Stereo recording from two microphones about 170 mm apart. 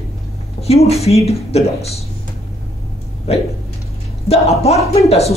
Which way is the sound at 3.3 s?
35° left (ahead or behind).